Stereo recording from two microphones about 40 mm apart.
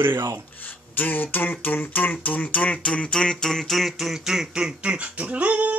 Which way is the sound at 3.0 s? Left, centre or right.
Centre.